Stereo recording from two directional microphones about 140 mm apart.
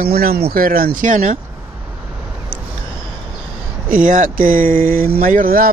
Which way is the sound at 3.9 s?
70° right (ahead or behind).